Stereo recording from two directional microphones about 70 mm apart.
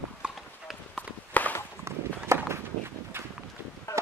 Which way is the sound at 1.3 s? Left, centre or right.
Left.